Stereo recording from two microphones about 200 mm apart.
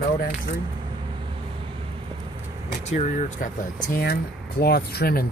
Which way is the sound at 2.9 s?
35° left (ahead or behind).